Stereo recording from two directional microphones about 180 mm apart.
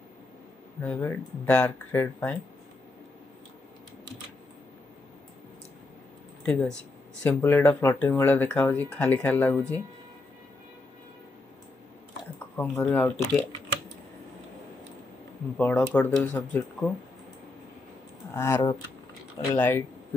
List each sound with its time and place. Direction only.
0.8 s speech: 10° left (ahead or behind)
6.4 s speech: 5° left (ahead or behind)
12.5 s speech: 10° left (ahead or behind)
15.5 s speech: 5° left (ahead or behind)
18.3 s speech: 15° left (ahead or behind)